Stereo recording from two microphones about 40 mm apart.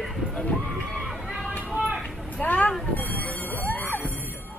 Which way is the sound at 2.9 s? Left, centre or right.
Left.